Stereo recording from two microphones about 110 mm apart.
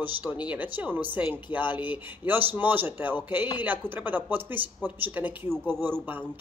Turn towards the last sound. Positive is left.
turn(degrees=-20)  # may be behind; listen again after turning